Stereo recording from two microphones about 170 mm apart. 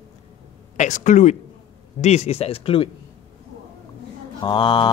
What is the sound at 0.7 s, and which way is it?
A man's voice, 45° left (ahead or behind).